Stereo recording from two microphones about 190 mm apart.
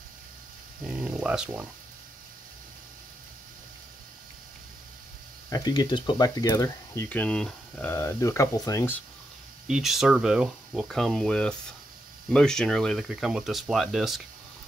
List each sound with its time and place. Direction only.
0.8 s speech: 5° right (ahead or behind)
5.5 s speech: 20° left (ahead or behind)
7.1 s speech: 5° left (ahead or behind)
9.7 s speech: centre (ahead or behind)